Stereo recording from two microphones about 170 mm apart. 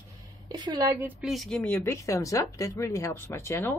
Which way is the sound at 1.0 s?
Centre (ahead or behind).